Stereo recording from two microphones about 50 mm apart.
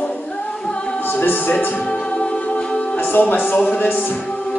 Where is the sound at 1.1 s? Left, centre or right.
Left.